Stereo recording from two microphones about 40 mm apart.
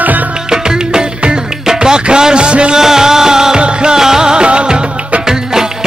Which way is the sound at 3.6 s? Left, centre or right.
Right.